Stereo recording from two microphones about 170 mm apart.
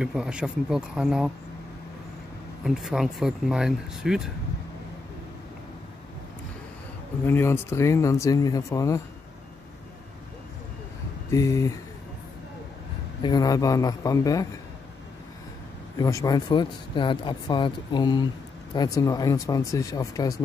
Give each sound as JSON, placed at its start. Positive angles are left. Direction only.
{"t": 0.0, "sound": "speech", "side_deg": -5}
{"t": 2.6, "sound": "speech", "side_deg": -5}
{"t": 7.2, "sound": "speech", "side_deg": 15}
{"t": 11.2, "sound": "speech", "side_deg": 20}
{"t": 13.2, "sound": "speech", "side_deg": 25}
{"t": 16.0, "sound": "speech", "side_deg": 20}